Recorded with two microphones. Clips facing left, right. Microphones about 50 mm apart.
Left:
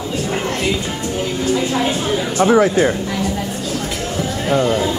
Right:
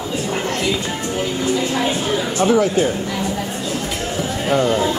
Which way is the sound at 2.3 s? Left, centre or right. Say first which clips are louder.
Left 3 dB; left.